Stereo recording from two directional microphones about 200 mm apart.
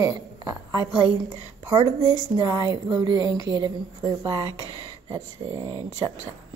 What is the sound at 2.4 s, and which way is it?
A woman's voice, 15° right (ahead or behind).